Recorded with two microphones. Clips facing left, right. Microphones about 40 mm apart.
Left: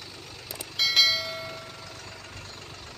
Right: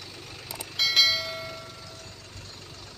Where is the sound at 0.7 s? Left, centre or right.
Centre.